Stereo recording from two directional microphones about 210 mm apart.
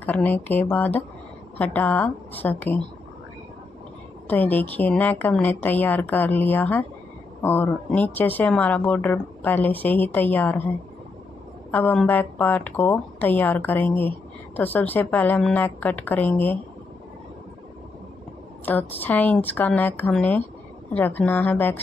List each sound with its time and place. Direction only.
0.0 s speech: 10° left (ahead or behind)
4.3 s speech: 10° left (ahead or behind)
11.7 s speech: 10° left (ahead or behind)
18.7 s speech: 10° left (ahead or behind)